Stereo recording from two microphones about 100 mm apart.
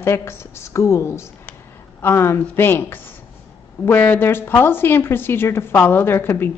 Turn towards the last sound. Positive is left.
turn(degrees=25)  # may be behind; listen again after turning